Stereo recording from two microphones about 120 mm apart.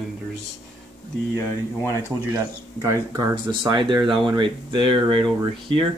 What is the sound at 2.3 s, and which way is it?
Speech, 25° right (ahead or behind).